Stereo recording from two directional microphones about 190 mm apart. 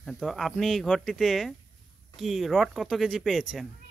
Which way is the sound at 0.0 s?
Centre (ahead or behind).